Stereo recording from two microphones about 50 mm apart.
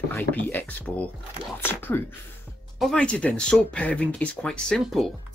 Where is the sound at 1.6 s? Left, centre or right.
Left.